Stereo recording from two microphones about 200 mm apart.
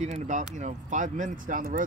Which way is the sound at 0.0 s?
35° right (ahead or behind).